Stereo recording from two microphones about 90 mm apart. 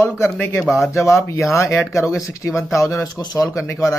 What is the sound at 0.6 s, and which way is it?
Speech, centre (ahead or behind).